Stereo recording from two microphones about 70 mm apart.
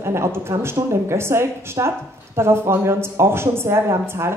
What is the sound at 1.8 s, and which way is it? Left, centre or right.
Speech, right.